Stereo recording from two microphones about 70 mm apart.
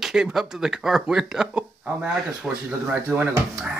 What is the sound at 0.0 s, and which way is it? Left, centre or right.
Speech, centre.